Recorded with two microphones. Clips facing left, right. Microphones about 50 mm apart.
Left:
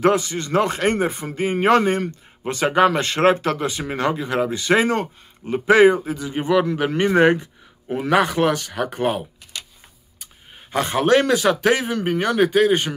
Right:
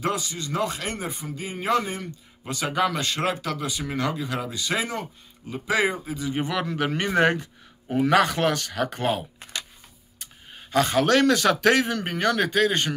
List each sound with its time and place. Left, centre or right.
0.0 s a man's voice: left
6.2 s a man's voice: left
9.4 s a sound: right
10.7 s a man's voice: left